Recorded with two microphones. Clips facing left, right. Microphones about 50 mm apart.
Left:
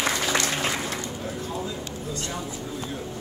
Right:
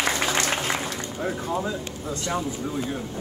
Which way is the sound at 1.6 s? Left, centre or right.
Right.